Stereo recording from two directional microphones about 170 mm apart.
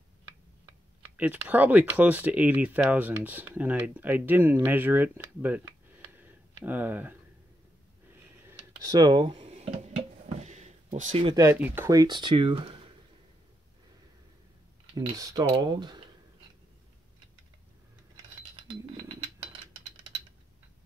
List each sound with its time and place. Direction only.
1.1 s speech: 10° right (ahead or behind)
8.5 s a sound: 20° right (ahead or behind); by 11.2 s 45° right (ahead or behind)
11.2 s speech: 20° right (ahead or behind)
11.5 s speech: 10° right (ahead or behind); by 12.9 s 30° right (ahead or behind)
15.1 s speech: 20° right (ahead or behind)
18.1 s a sound: 30° right (ahead or behind)